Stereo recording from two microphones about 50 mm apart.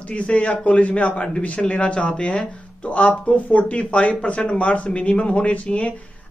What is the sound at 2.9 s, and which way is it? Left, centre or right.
Speech, left.